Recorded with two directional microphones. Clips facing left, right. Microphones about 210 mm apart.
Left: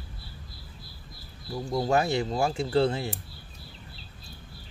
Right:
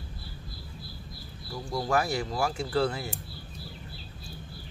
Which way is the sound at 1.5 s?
20° left (ahead or behind).